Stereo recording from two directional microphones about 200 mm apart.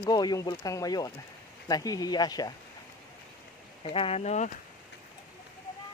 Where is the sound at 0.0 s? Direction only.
20° left (ahead or behind).